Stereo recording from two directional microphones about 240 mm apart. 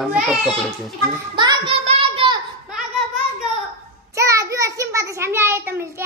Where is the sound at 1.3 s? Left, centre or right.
Right.